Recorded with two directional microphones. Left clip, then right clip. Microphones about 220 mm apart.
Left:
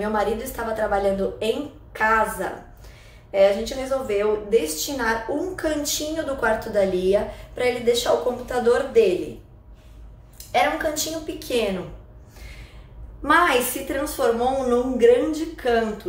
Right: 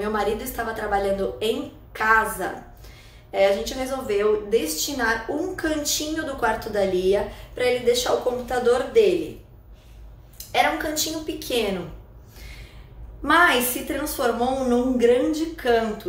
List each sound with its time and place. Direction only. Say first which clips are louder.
0.0 s a woman's voice: left 1 dB; centre (ahead or behind)
10.3 s a woman's voice: even; centre (ahead or behind)
13.2 s a woman's voice: even; centre (ahead or behind)